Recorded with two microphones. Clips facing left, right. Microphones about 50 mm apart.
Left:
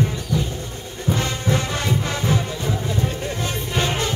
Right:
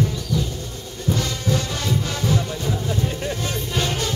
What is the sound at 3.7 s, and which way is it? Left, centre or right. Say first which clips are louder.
Music: left 2 dB; left.